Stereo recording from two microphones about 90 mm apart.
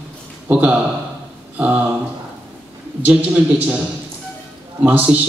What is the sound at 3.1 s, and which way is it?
Speech, 15° right (ahead or behind).